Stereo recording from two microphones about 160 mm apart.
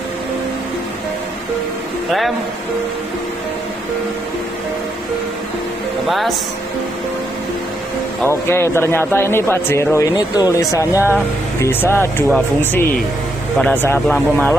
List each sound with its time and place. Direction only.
6.0 s speech: centre (ahead or behind)
8.3 s a man's voice: 15° left (ahead or behind)
13.6 s a man's voice: 10° left (ahead or behind)